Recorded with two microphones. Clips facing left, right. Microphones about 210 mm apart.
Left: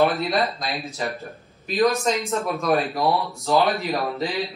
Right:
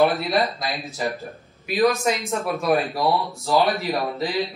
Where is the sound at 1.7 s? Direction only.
15° right (ahead or behind).